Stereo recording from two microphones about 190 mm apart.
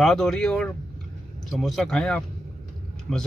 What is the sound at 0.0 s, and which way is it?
A man's voice, centre (ahead or behind).